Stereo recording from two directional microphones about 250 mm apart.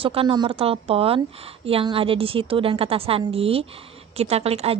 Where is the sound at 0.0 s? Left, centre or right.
Right.